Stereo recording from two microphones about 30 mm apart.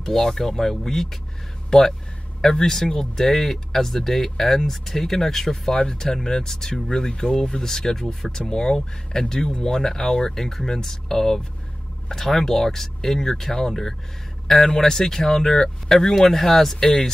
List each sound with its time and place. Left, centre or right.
0.0 s speech: centre